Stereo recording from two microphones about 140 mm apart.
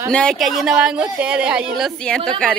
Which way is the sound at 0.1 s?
5° left (ahead or behind).